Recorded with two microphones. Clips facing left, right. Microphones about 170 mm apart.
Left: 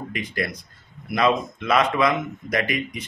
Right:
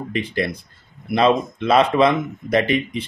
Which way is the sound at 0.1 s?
30° right (ahead or behind).